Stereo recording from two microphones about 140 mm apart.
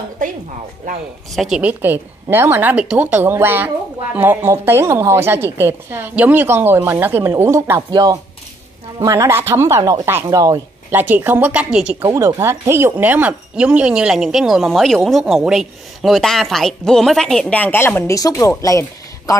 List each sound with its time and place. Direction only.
1.3 s speech: centre (ahead or behind)
1.6 s a woman's voice: 15° right (ahead or behind)
12.1 s speech: 25° right (ahead or behind); by 19.3 s 25° left (ahead or behind)